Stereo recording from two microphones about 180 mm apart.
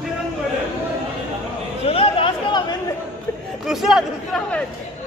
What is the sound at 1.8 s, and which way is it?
Chatter, 30° left (ahead or behind).